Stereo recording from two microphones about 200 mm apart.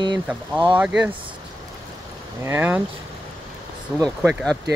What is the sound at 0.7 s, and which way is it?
Speech, 5° right (ahead or behind).